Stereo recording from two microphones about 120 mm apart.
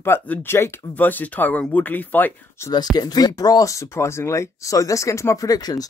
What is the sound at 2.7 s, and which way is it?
Speech, 35° left (ahead or behind).